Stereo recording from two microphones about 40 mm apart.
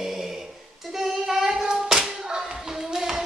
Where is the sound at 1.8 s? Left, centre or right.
Centre.